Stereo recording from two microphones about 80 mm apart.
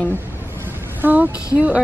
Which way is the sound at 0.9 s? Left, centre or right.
Right.